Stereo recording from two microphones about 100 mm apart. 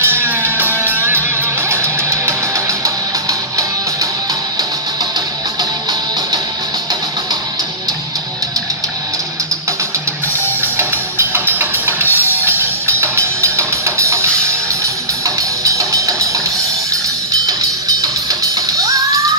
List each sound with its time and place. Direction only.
0.0 s music: 25° right (ahead or behind)
5.6 s music: 45° right (ahead or behind)
10.6 s music: 25° right (ahead or behind)
17.5 s music: 35° right (ahead or behind)